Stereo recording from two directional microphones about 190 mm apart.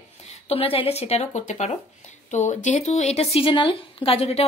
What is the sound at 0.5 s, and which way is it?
Speech, 30° left (ahead or behind).